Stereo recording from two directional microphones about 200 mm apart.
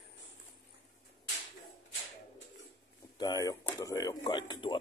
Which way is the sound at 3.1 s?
20° left (ahead or behind).